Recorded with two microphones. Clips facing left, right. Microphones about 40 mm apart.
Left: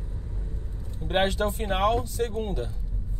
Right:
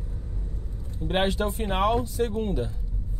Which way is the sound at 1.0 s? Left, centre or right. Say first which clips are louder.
Even; centre.